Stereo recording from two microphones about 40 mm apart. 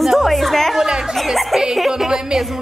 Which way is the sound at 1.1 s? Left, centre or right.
Centre.